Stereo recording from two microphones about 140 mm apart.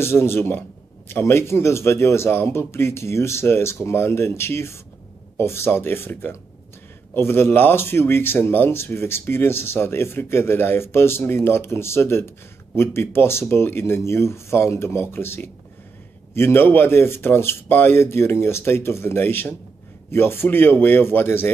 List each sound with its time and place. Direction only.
0.0 s speech: 15° left (ahead or behind)